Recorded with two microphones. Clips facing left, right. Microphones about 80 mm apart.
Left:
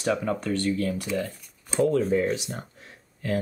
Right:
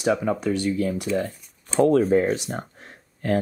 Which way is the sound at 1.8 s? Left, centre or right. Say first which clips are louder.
Right 5 dB; right.